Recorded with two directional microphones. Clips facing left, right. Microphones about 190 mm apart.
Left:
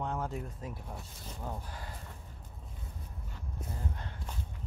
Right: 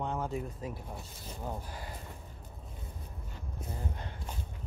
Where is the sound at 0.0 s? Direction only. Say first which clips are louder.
Right 2 dB; centre (ahead or behind).